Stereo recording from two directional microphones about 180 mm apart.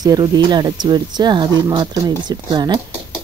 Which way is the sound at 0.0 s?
20° right (ahead or behind).